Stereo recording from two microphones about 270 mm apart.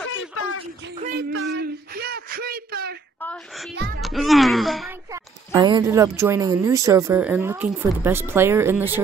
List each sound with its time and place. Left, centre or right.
0.1 s a sound: left
0.9 s speech: right
1.3 s a sound: right
3.2 s child singing: centre
4.0 s speech: centre
4.8 s a woman's voice: centre